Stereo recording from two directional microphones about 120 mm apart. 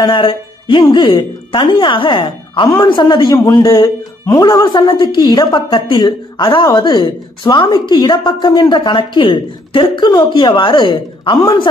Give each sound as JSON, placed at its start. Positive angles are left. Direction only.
{"t": 0.0, "sound": "a woman's voice", "side_deg": 45}